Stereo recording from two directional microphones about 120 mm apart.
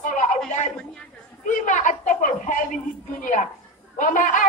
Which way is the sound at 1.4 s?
90° left.